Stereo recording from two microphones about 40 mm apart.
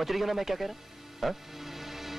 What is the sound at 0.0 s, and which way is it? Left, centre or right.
Music, centre.